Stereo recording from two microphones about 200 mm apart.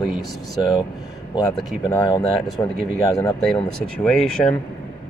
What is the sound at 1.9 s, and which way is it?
Speech, 20° left (ahead or behind).